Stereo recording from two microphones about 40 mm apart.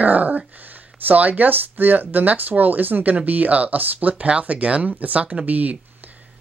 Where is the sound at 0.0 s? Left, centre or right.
Right.